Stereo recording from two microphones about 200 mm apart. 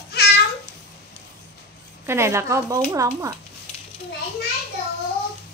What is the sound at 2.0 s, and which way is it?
Speech, 15° right (ahead or behind).